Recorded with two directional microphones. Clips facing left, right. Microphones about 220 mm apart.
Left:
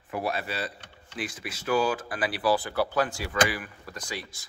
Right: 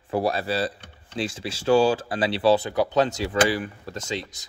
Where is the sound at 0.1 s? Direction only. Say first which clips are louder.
Right 7 dB; 35° right (ahead or behind).